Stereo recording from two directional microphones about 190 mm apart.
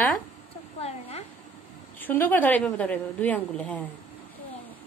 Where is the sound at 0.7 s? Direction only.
35° left (ahead or behind).